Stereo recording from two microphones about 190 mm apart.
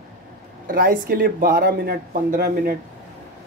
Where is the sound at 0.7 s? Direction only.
50° right (ahead or behind).